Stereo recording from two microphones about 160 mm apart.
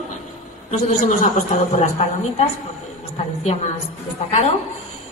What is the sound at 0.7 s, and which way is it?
A woman's voice, 50° left (ahead or behind).